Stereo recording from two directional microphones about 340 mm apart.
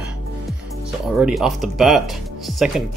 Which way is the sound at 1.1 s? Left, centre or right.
Centre.